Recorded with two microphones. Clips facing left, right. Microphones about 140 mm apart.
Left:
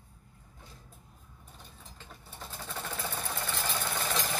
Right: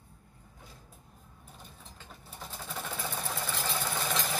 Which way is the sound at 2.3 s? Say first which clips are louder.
Even; centre (ahead or behind).